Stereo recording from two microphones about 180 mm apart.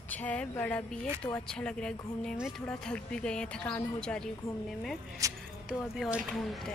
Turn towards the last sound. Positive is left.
turn(degrees=0)  # may be behind; listen again after turning